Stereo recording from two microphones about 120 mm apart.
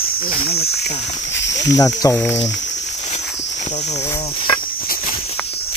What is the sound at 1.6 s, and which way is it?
Speech, 30° left (ahead or behind).